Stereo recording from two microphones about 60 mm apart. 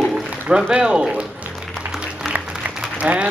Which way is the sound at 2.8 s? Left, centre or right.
Centre.